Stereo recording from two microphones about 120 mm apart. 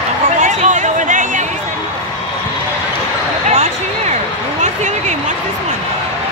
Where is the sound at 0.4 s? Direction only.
90° right.